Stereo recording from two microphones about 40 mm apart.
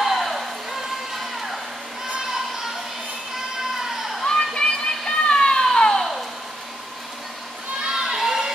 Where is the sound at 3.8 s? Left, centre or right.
Centre.